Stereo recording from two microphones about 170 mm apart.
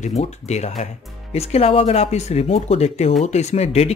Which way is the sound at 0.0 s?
40° left (ahead or behind).